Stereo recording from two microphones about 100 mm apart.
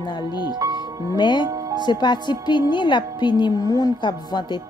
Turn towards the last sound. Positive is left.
turn(degrees=50)  # may be behind; listen again after turning